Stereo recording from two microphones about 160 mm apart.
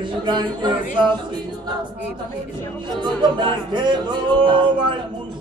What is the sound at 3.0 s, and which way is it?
Music, 30° right (ahead or behind).